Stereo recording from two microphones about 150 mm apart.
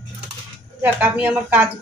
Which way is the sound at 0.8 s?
10° right (ahead or behind).